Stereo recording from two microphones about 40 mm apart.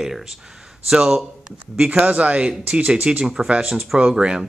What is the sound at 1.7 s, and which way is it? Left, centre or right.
Speech, centre.